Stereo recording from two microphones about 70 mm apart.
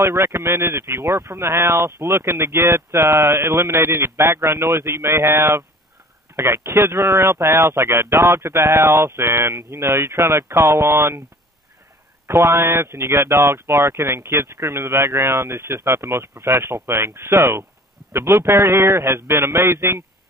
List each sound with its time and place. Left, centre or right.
0.0 s speech: right
12.3 s speech: right